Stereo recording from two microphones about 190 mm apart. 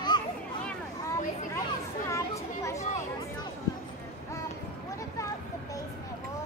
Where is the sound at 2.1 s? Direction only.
15° left (ahead or behind).